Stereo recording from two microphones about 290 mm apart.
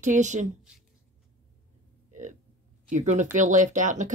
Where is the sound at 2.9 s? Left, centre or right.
Right.